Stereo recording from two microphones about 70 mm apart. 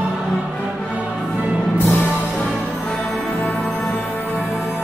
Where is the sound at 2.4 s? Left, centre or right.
Centre.